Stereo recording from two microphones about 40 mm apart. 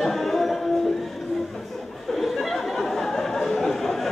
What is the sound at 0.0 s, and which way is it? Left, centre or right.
Music, centre.